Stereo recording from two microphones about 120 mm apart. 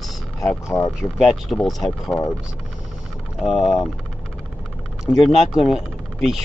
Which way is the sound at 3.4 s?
Centre (ahead or behind).